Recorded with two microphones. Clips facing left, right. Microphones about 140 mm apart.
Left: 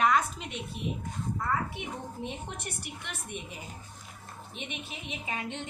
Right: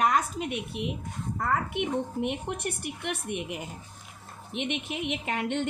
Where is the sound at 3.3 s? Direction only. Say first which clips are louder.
Right 7 dB; 70° right (ahead or behind).